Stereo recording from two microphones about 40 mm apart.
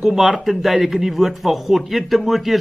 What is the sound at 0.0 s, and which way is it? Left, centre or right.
A woman's voice, centre.